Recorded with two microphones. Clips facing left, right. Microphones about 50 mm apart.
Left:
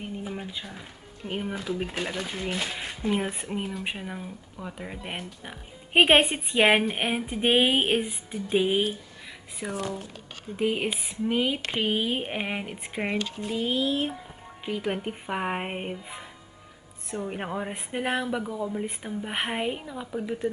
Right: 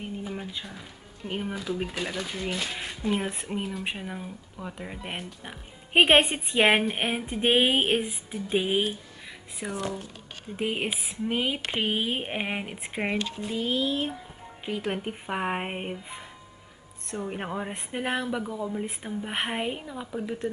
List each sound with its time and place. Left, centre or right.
0.2 s music: centre
1.6 s speech: centre
1.9 s speech: centre
13.5 s speech: centre